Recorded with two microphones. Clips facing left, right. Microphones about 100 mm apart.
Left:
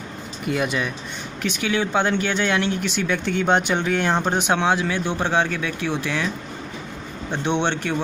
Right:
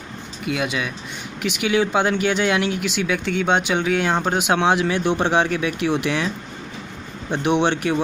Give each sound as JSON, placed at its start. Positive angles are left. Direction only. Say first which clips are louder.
{"t": 0.6, "sound": "speech", "louder": "left 2 dB", "side_deg": 0}
{"t": 1.4, "sound": "speech", "louder": "right 3 dB", "side_deg": -15}
{"t": 3.1, "sound": "speech", "louder": "left 1 dB", "side_deg": 0}